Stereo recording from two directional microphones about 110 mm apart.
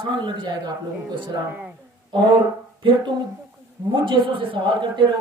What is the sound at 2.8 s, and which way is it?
A man's voice, 45° right (ahead or behind).